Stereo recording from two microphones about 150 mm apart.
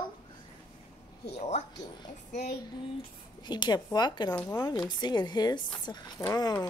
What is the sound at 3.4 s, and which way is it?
A woman's voice, 30° left (ahead or behind).